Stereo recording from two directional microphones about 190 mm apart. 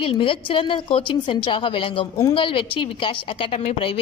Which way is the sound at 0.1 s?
30° left (ahead or behind).